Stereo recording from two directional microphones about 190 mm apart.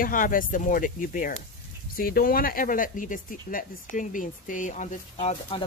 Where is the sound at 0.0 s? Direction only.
45° left (ahead or behind).